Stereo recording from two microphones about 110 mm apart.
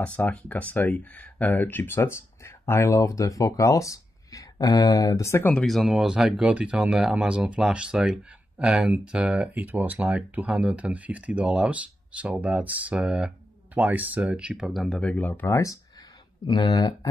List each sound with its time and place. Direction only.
0.0 s speech: 10° left (ahead or behind)
5.5 s speech: 5° left (ahead or behind); by 15.8 s 25° left (ahead or behind)
16.4 s speech: 35° left (ahead or behind)